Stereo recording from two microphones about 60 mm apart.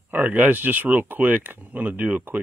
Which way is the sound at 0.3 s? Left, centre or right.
Right.